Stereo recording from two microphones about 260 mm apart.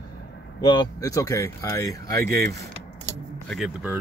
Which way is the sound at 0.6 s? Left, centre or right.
Centre.